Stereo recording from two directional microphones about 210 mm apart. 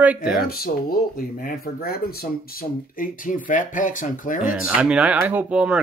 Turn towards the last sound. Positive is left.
turn(degrees=-5)  # may be behind; listen again after turning